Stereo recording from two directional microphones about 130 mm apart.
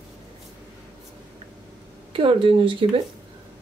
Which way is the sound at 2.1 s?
40° right (ahead or behind).